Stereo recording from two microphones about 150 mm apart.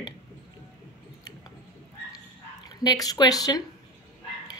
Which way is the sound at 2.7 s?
25° left (ahead or behind).